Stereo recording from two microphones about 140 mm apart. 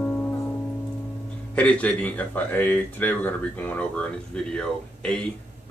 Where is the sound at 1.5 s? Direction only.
10° left (ahead or behind).